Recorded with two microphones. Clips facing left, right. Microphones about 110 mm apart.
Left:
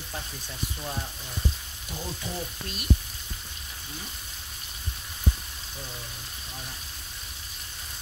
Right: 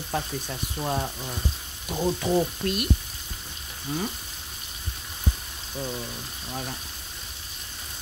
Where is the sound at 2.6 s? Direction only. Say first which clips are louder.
Right 12 dB; 65° right (ahead or behind).